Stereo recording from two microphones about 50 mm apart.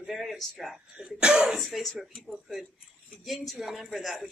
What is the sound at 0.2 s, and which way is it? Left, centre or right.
Speech, centre.